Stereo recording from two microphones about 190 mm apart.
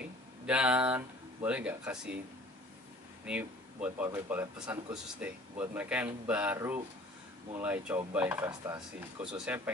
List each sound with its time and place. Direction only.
0.0 s speech: 5° right (ahead or behind)
3.3 s speech: 10° right (ahead or behind)
8.5 s speech: 20° right (ahead or behind)
9.2 s speech: 5° right (ahead or behind)